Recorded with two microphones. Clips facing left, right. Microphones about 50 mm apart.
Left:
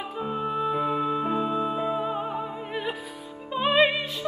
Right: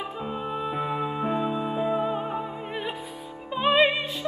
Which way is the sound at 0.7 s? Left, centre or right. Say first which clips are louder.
Left 3 dB; centre.